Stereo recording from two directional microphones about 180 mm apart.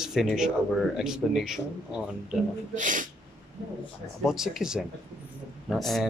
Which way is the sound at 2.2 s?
45° right (ahead or behind).